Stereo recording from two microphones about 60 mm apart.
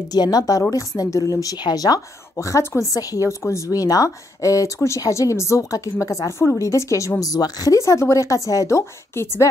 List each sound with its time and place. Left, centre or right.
0.1 s a woman's voice: left
2.9 s a woman's voice: left
3.3 s speech: left
3.7 s a woman's voice: left